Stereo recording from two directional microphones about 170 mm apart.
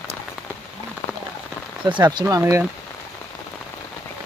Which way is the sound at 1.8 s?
25° right (ahead or behind).